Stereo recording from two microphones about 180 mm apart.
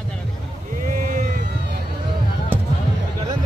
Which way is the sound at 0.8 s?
50° right (ahead or behind).